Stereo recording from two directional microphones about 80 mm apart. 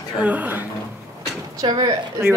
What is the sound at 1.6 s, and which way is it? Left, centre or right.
Speech, right.